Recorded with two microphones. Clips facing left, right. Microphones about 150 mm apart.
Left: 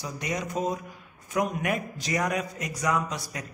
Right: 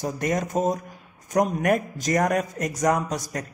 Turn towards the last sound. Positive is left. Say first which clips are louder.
# right 3 dB
turn(degrees=-45)  # may be behind; listen again after turning